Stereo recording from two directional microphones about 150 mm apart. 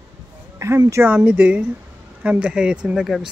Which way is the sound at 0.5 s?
20° right (ahead or behind).